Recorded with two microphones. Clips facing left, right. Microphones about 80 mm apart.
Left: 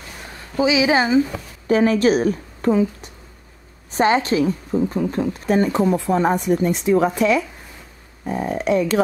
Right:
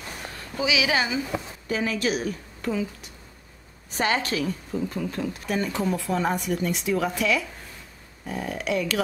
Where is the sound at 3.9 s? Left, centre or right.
Left.